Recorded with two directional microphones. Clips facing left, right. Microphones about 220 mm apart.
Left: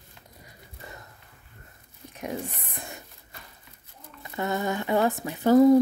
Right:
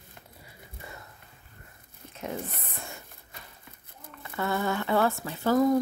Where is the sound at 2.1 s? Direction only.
15° left (ahead or behind).